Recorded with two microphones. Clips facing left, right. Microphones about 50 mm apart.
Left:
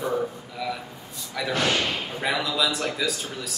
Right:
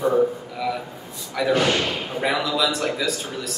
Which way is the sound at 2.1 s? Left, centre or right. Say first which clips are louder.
Right 4 dB; centre.